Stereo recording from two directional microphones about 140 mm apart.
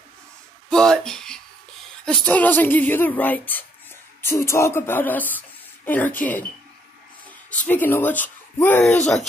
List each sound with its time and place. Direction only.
0.7 s speech: 5° left (ahead or behind)